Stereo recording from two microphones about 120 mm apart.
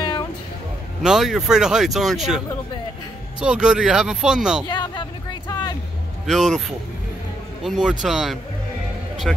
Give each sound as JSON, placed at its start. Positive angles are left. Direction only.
{"t": 1.0, "sound": "speech", "side_deg": -5}
{"t": 4.6, "sound": "speech", "side_deg": 35}
{"t": 5.5, "sound": "music", "side_deg": 35}
{"t": 6.2, "sound": "speech", "side_deg": 0}
{"t": 7.6, "sound": "speech", "side_deg": -5}